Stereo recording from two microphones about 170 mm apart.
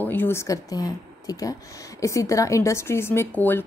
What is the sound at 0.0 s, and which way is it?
Speech, 10° left (ahead or behind).